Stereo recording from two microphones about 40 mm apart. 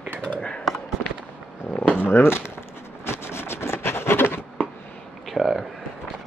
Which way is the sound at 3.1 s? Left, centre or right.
Left.